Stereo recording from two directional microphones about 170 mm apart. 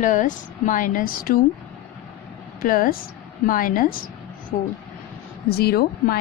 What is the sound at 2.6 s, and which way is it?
A woman's voice, 55° left (ahead or behind).